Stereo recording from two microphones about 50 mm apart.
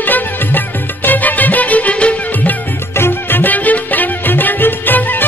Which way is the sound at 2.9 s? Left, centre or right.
Left.